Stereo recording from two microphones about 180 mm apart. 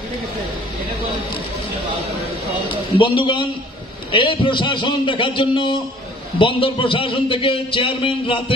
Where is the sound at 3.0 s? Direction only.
25° left (ahead or behind).